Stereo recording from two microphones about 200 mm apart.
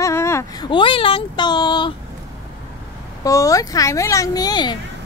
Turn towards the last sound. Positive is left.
turn(degrees=20)  # may be behind; listen again after turning